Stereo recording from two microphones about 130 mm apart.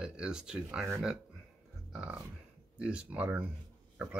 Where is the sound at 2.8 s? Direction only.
10° right (ahead or behind).